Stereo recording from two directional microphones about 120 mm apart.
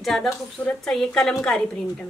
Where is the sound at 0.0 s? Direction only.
Centre (ahead or behind).